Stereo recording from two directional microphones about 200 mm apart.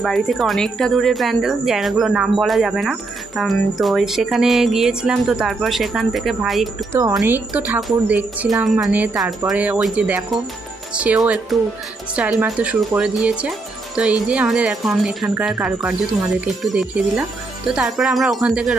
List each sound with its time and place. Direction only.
0.0 s speech: centre (ahead or behind)
6.9 s speech: 15° right (ahead or behind)